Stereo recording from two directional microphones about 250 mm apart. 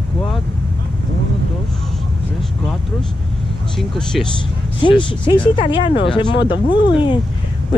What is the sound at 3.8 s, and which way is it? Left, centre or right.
Speech, centre.